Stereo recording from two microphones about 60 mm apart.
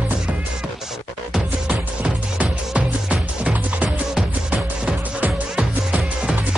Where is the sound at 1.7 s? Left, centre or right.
Right.